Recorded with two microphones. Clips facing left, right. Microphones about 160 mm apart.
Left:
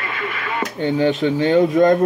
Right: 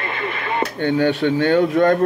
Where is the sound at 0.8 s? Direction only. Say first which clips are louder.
Left 1 dB; 15° left (ahead or behind).